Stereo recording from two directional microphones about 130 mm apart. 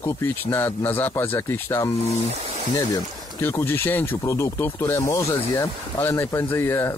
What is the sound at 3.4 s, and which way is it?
Speech, 20° left (ahead or behind).